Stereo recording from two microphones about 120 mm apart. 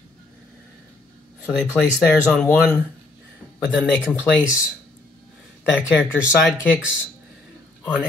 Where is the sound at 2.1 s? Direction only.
5° left (ahead or behind).